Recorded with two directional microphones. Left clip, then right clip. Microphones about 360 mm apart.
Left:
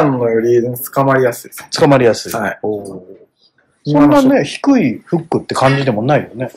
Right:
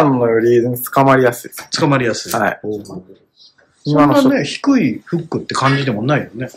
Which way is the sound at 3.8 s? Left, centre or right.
Centre.